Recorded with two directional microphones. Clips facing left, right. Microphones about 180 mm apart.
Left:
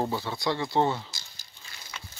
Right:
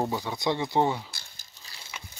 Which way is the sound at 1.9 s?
15° right (ahead or behind).